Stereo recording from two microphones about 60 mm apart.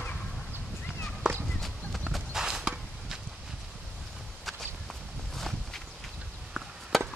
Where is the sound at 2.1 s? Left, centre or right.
Centre.